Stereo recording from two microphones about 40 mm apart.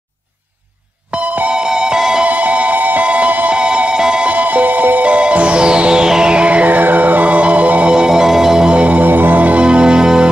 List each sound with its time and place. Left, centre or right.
1.1 s music: right
1.5 s music: right
2.2 s music: right
3.5 s music: right
4.3 s music: right
5.0 s music: right
7.9 s music: centre
8.6 s music: right
9.7 s music: right